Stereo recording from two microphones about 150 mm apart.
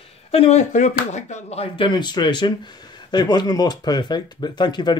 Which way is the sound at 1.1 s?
45° left (ahead or behind).